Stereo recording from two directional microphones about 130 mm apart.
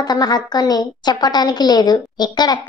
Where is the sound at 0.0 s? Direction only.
30° left (ahead or behind).